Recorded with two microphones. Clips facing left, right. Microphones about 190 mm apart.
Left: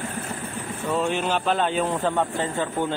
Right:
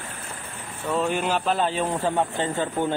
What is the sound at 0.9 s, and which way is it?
Speech, 5° right (ahead or behind).